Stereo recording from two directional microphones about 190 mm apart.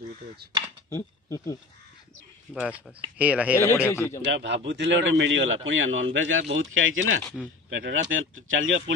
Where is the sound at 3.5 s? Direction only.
10° left (ahead or behind).